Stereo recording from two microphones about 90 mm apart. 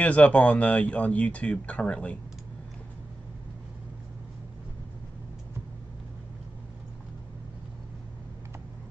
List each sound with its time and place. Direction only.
0.0 s speech: 15° left (ahead or behind)